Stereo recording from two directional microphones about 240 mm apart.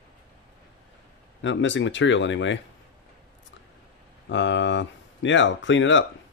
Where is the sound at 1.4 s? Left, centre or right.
Left.